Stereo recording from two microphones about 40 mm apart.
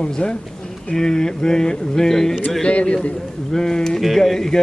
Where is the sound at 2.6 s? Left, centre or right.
Left.